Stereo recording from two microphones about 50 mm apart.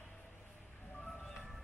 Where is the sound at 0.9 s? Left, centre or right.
Centre.